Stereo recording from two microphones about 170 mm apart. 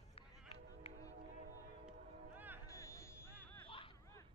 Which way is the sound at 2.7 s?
15° left (ahead or behind).